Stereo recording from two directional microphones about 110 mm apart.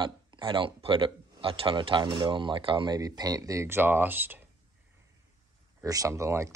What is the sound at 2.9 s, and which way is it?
Speech, 35° right (ahead or behind).